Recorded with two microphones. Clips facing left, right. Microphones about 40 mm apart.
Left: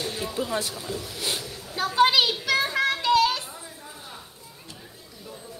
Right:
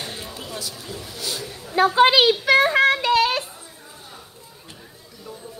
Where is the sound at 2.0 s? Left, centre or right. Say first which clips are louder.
Right 3 dB; right.